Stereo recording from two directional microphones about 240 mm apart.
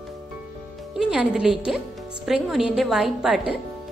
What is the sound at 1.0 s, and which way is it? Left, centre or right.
A woman's voice, centre.